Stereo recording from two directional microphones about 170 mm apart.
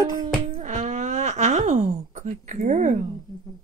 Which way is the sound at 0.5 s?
45° right (ahead or behind).